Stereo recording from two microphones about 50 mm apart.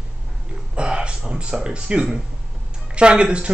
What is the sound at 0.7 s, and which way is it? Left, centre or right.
Speech, centre.